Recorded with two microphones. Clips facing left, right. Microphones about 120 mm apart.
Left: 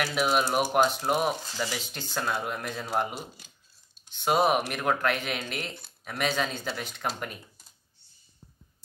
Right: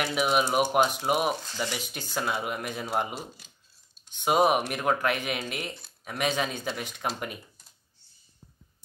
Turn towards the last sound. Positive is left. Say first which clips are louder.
# right 1 dB
turn(degrees=-10)  # may be behind; listen again after turning